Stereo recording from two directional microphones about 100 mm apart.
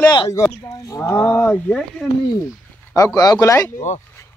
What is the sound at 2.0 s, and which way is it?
Speech, 5° left (ahead or behind).